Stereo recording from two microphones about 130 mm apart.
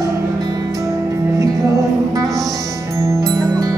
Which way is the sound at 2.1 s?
25° right (ahead or behind).